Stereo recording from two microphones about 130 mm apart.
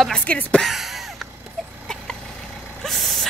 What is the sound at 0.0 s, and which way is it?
Speech, 10° left (ahead or behind).